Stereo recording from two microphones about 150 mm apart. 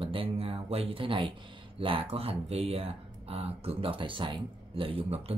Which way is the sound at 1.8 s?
35° right (ahead or behind).